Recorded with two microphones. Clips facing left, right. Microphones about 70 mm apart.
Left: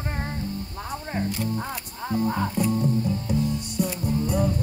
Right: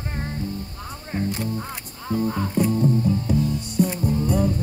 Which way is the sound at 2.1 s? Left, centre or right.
Centre.